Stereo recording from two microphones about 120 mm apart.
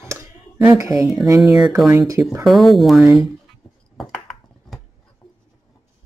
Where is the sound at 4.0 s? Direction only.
5° left (ahead or behind).